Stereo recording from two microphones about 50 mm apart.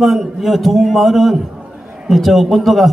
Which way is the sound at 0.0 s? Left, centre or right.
Centre.